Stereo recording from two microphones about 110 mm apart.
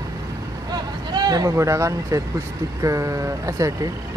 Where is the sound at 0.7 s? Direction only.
40° right (ahead or behind).